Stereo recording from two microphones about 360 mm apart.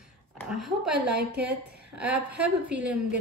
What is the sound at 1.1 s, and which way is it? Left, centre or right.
Speech, right.